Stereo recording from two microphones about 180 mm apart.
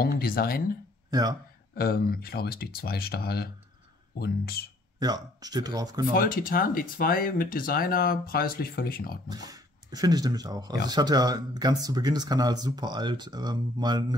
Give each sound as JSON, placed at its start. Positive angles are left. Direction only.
{"t": 0.0, "sound": "speech", "side_deg": 55}
{"t": 1.8, "sound": "speech", "side_deg": 55}
{"t": 4.9, "sound": "speech", "side_deg": -20}
{"t": 6.1, "sound": "speech", "side_deg": 50}
{"t": 9.3, "sound": "speech", "side_deg": -20}